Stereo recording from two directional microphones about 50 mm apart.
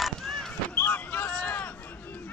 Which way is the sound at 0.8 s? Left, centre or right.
Left.